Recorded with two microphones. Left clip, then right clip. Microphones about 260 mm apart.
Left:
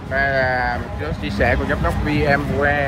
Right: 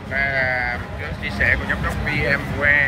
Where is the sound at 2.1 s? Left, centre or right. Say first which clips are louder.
Left 2 dB; centre.